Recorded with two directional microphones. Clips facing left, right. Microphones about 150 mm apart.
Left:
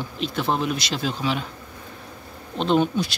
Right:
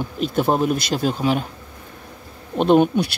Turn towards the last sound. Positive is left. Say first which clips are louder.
# right 5 dB
turn(degrees=-55)  # may be behind; listen again after turning